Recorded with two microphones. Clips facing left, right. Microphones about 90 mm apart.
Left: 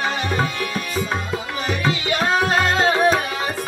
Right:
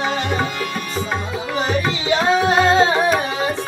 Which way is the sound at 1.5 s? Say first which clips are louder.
Right 3 dB; 25° right (ahead or behind).